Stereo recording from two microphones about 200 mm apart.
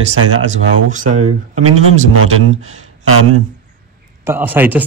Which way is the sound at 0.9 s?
40° right (ahead or behind).